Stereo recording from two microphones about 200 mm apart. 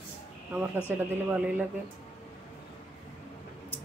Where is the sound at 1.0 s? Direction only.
5° right (ahead or behind).